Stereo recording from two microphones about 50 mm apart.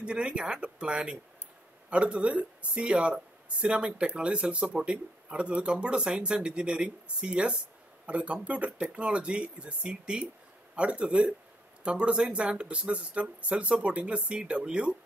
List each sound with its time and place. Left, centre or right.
0.0 s speech: right